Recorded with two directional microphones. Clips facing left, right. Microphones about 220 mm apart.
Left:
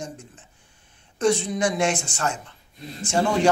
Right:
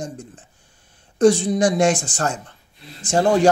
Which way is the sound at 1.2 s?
35° right (ahead or behind).